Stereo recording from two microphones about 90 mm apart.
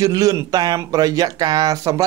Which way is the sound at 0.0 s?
40° right (ahead or behind).